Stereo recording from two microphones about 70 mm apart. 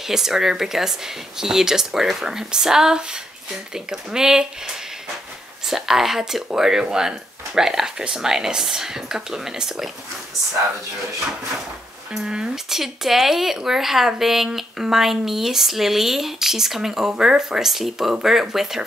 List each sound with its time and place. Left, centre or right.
0.1 s speech: centre
5.7 s speech: centre
12.1 s speech: centre